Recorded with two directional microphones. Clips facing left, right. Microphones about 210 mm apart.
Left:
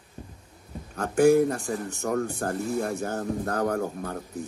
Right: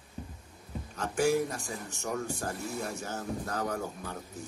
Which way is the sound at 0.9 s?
55° left (ahead or behind).